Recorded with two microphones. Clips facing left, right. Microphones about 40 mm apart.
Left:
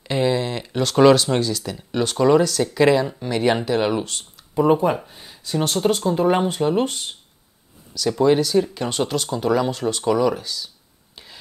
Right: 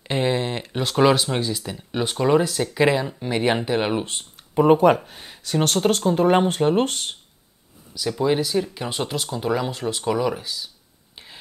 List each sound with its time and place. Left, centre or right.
0.0 s a sound: right
0.8 s speech: centre
4.2 s speech: right
8.2 s speech: centre
11.2 s whispering: centre